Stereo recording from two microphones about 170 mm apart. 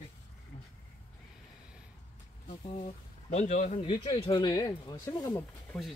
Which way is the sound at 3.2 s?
40° left (ahead or behind).